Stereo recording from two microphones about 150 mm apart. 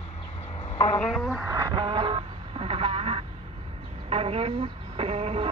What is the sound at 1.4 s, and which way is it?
Speech, 20° right (ahead or behind).